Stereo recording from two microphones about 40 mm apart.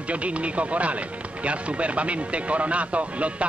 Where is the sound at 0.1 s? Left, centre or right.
Right.